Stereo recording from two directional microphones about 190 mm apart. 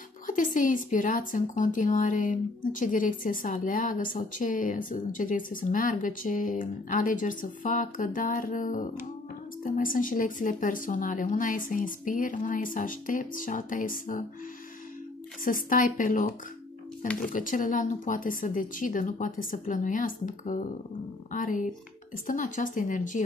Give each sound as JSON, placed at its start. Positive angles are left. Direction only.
{"t": 0.3, "sound": "speech", "side_deg": 45}
{"t": 15.4, "sound": "speech", "side_deg": 45}